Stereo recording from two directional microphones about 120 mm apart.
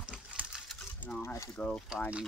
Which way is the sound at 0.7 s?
10° left (ahead or behind).